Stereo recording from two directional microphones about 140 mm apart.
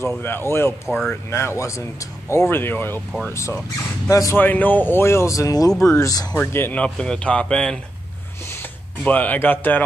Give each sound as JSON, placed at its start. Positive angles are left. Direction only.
{"t": 0.0, "sound": "speech", "side_deg": 15}
{"t": 0.8, "sound": "speech", "side_deg": 0}
{"t": 1.3, "sound": "speech", "side_deg": 20}
{"t": 4.4, "sound": "speech", "side_deg": 10}
{"t": 9.0, "sound": "speech", "side_deg": 10}